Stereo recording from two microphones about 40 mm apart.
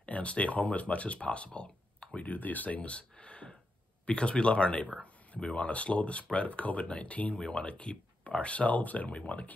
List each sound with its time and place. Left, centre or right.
0.0 s speech: left
2.9 s a sound: left
4.0 s speech: left
7.3 s speech: left